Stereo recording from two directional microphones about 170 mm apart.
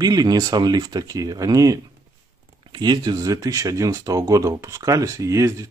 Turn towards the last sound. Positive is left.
turn(degrees=-20)  # may be behind; listen again after turning